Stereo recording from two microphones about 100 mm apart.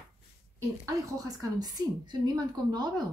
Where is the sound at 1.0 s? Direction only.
35° right (ahead or behind).